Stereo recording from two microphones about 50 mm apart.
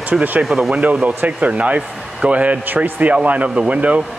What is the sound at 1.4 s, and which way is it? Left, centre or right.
Speech, right.